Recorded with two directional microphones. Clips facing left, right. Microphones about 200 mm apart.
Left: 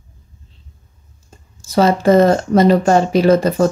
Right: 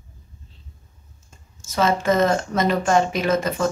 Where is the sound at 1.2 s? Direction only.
35° left (ahead or behind).